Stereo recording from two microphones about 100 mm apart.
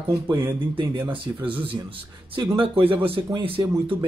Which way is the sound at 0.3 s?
30° right (ahead or behind).